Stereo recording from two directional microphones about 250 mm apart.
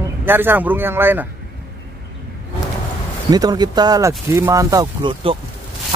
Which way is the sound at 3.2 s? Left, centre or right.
Centre.